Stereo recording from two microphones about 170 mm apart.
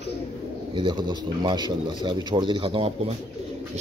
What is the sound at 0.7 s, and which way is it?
Speech, 25° right (ahead or behind).